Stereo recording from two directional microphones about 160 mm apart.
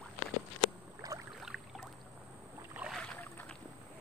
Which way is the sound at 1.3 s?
Centre (ahead or behind).